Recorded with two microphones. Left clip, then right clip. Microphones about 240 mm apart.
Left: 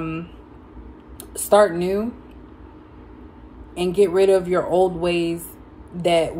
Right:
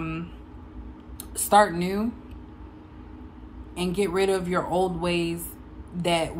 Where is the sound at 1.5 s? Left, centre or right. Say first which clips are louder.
Left 4 dB; centre.